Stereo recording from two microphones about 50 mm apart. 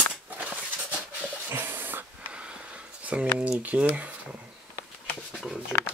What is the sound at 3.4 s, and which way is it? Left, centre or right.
Speech, right.